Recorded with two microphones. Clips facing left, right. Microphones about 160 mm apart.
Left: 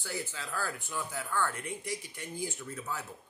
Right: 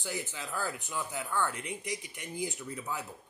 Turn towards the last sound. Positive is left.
turn(degrees=-15)  # may be behind; listen again after turning